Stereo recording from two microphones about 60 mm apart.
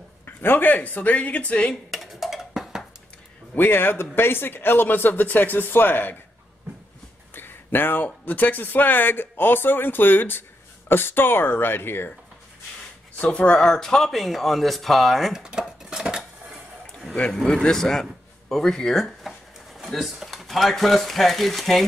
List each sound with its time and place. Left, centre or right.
0.2 s speech: left
1.9 s a sound: centre
3.5 s speech: left
7.3 s speech: left
13.2 s speech: left
13.7 s speech: centre
15.3 s speech: centre
15.8 s dishes: centre
17.3 s a man's voice: centre
18.5 s a sound: centre
20.3 s speech: centre